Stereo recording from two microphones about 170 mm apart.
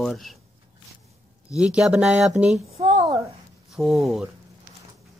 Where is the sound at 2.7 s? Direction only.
35° right (ahead or behind).